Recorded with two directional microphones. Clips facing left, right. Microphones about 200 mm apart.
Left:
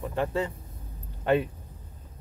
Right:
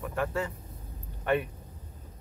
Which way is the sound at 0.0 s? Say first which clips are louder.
Left 3 dB; 25° left (ahead or behind).